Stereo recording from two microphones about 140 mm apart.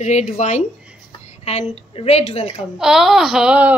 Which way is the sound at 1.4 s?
50° left (ahead or behind).